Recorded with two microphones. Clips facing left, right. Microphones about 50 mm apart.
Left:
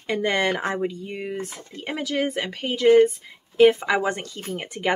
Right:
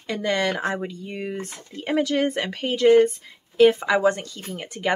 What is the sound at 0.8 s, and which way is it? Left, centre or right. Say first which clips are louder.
Speech: left 3 dB; centre.